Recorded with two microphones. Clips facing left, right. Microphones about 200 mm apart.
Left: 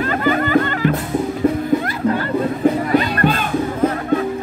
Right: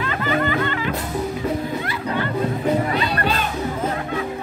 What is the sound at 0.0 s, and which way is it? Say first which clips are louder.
Music: left 4 dB; 45° left (ahead or behind).